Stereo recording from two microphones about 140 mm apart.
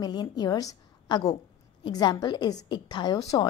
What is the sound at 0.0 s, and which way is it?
A woman's voice, 30° left (ahead or behind).